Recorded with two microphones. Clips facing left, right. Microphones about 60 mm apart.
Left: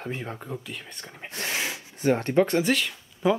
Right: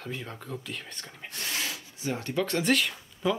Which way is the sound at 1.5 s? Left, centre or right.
Left.